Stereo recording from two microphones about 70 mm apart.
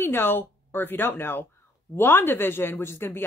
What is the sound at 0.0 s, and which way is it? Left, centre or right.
Speech, left.